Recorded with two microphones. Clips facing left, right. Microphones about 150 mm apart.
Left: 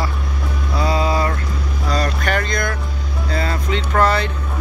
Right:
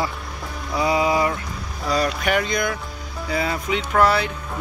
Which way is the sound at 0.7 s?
15° right (ahead or behind).